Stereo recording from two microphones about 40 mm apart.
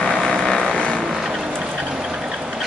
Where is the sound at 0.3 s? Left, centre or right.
Centre.